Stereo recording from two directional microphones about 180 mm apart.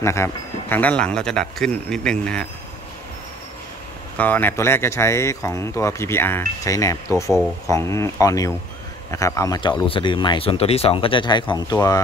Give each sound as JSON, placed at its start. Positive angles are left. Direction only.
{"t": 0.0, "sound": "speech", "side_deg": 15}
{"t": 4.2, "sound": "speech", "side_deg": 10}